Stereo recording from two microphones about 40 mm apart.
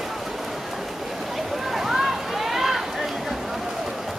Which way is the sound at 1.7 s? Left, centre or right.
Centre.